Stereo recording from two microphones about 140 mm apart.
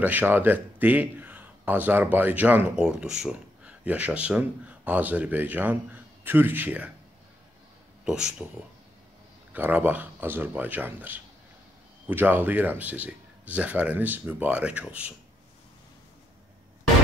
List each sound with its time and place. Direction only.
0.0 s a man's voice: 10° right (ahead or behind)
8.0 s speech: 5° right (ahead or behind)
9.5 s speech: 10° right (ahead or behind)